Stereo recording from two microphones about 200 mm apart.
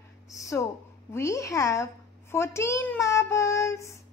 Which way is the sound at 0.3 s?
15° left (ahead or behind).